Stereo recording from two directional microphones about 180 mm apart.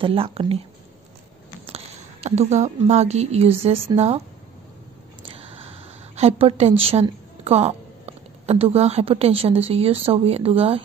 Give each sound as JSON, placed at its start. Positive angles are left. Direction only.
{"t": 0.0, "sound": "a woman's voice", "side_deg": -30}
{"t": 2.2, "sound": "a woman's voice", "side_deg": -40}
{"t": 5.2, "sound": "speech", "side_deg": -30}